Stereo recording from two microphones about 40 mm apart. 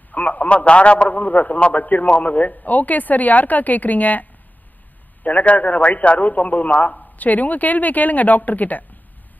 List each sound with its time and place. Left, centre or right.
0.1 s a man's voice: left